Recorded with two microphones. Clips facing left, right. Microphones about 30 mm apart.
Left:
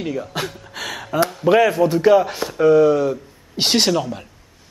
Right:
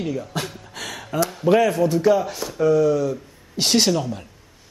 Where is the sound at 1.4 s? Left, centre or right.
Left.